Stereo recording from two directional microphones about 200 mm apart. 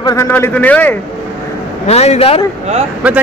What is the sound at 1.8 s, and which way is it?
Speech, 30° left (ahead or behind).